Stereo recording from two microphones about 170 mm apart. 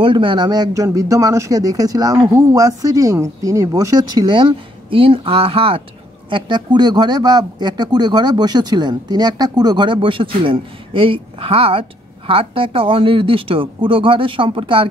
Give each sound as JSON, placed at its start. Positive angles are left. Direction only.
{"t": 0.0, "sound": "speech", "side_deg": -30}